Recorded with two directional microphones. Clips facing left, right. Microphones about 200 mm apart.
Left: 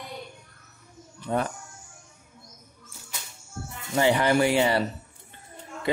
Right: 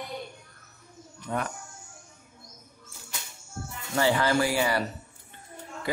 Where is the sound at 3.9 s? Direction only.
20° left (ahead or behind).